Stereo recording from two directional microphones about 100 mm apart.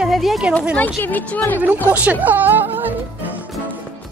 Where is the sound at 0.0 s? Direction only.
Centre (ahead or behind).